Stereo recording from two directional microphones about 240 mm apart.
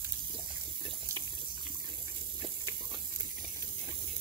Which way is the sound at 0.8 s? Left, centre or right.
Centre.